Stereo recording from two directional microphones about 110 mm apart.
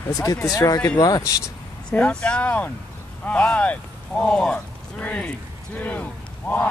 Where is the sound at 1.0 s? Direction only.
30° left (ahead or behind).